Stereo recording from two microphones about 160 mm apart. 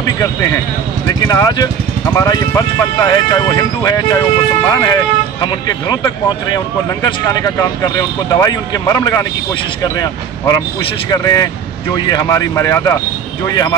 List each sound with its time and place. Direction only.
1.0 s speech: 20° left (ahead or behind)